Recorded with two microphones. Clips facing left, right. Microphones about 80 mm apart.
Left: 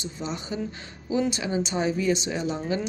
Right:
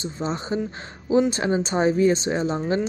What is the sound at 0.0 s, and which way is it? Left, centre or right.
A woman's voice, right.